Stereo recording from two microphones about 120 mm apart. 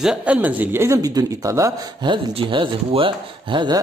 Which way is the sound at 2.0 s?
45° right (ahead or behind).